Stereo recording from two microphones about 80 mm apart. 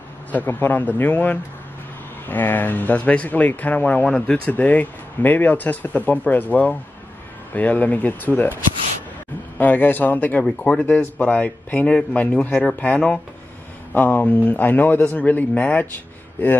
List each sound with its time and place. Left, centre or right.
0.3 s speech: left
9.6 s speech: left